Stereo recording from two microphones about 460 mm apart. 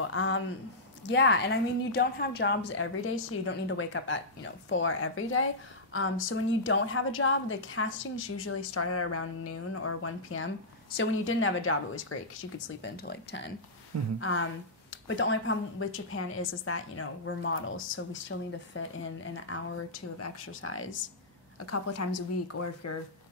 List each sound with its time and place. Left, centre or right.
0.1 s a woman's voice: left